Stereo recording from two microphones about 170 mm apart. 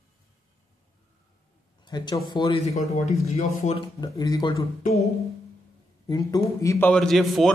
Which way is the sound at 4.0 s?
25° left (ahead or behind).